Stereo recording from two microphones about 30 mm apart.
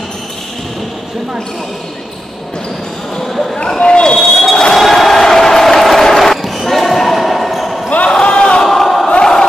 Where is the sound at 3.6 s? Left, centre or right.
Left.